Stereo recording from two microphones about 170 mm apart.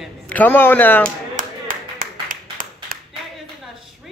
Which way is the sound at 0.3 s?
10° left (ahead or behind).